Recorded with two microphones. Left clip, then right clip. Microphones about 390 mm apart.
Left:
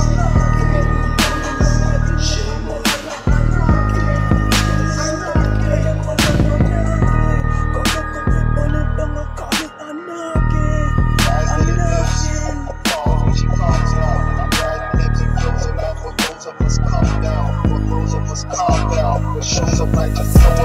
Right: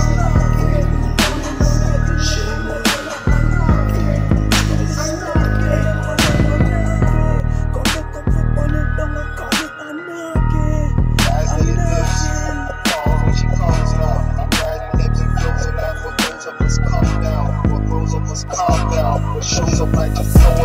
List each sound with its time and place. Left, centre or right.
0.2 s music: right
2.8 s music: centre
5.4 s music: right
6.1 s music: centre
11.3 s music: right
18.6 s music: right